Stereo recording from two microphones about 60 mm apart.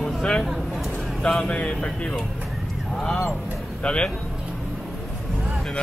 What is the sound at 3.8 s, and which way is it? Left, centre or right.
Speech, centre.